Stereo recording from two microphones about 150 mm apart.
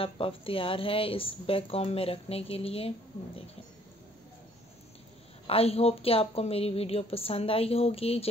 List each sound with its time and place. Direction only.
0.0 s a woman's voice: 40° left (ahead or behind)
5.5 s a woman's voice: 40° left (ahead or behind)